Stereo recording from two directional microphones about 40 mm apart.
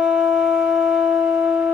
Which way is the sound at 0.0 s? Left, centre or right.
Right.